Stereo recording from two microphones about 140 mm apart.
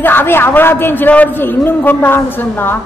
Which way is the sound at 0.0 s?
15° left (ahead or behind).